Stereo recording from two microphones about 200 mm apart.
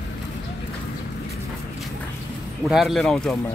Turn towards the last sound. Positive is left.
turn(degrees=0)  # may be behind; listen again after turning